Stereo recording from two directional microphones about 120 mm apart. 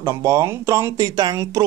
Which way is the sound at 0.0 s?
25° right (ahead or behind).